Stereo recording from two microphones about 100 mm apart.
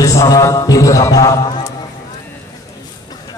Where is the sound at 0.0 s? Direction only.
35° left (ahead or behind).